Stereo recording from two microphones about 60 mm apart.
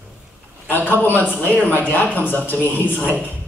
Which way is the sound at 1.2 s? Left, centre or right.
Right.